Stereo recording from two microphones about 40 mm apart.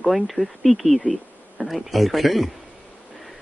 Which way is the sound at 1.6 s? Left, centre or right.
Centre.